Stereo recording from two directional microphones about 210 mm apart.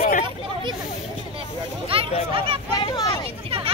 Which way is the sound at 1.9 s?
25° right (ahead or behind).